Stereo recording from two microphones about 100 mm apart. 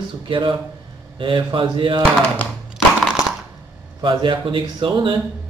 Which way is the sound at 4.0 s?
55° right (ahead or behind).